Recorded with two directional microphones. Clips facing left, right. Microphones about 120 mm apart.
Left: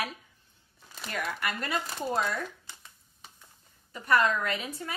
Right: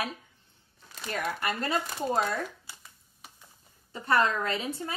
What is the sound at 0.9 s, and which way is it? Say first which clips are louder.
Crumpling: right 2 dB; centre (ahead or behind).